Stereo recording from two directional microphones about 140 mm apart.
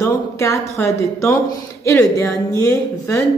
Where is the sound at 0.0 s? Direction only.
20° left (ahead or behind).